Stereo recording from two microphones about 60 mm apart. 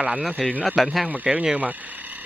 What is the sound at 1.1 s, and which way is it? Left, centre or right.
Speech, right.